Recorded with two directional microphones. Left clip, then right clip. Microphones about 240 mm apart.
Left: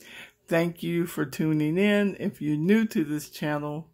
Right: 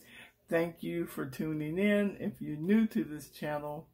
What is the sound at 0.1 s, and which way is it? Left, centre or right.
Speech, left.